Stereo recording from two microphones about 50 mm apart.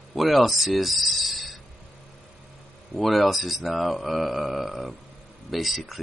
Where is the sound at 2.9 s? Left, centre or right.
Centre.